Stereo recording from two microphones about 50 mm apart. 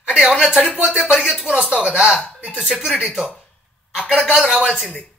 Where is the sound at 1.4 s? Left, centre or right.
Centre.